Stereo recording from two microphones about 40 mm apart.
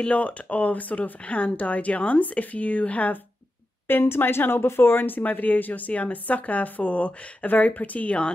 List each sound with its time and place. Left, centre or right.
0.0 s speech: left
3.8 s speech: left